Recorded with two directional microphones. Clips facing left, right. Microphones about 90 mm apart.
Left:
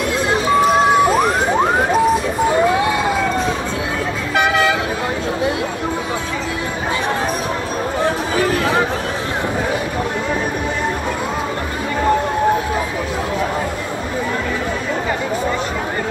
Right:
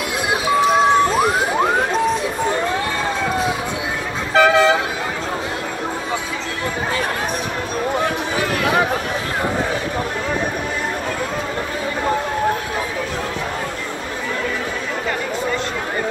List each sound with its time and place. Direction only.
0.7 s crowd: 5° left (ahead or behind)
2.4 s a sound: 10° left (ahead or behind)
4.3 s toot: 30° right (ahead or behind)